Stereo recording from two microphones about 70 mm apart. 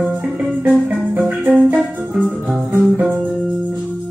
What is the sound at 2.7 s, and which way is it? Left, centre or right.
Music, right.